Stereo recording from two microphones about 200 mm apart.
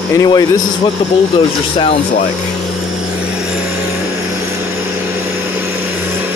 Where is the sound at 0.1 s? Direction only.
15° left (ahead or behind).